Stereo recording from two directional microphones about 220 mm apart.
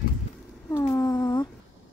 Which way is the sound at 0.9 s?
20° left (ahead or behind).